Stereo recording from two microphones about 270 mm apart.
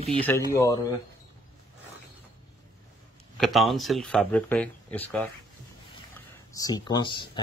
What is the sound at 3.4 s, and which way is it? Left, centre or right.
Speech, centre.